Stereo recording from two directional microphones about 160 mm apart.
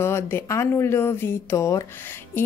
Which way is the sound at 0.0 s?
15° left (ahead or behind).